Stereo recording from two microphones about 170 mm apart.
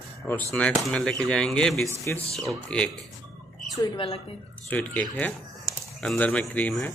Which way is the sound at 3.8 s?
30° left (ahead or behind).